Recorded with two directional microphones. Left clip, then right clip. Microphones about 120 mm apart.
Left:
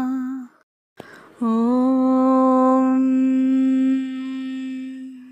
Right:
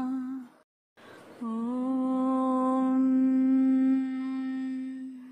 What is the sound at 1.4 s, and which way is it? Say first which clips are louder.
Humming: left 14 dB; 60° left (ahead or behind).